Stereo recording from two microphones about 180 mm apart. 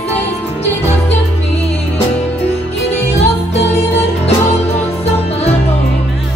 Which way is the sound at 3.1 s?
35° left (ahead or behind).